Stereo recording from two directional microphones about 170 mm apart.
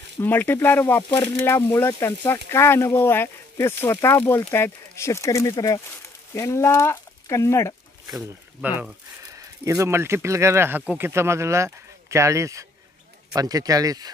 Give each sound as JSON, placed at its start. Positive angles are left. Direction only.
{"t": 0.2, "sound": "speech", "side_deg": 10}
{"t": 8.5, "sound": "speech", "side_deg": -5}
{"t": 9.4, "sound": "speech", "side_deg": -20}